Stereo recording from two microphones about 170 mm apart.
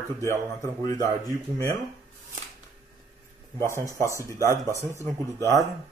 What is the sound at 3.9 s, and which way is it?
Speech, 15° left (ahead or behind).